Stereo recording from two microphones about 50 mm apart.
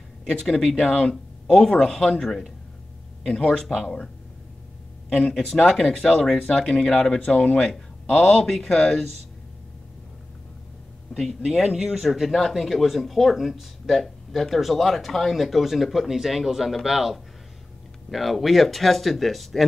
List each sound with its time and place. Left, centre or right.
0.3 s speech: centre
5.1 s speech: centre
7.7 s speech: centre
11.1 s speech: centre
12.0 s speech: centre